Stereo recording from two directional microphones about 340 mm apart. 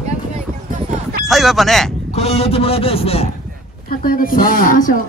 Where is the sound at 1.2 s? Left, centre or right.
Centre.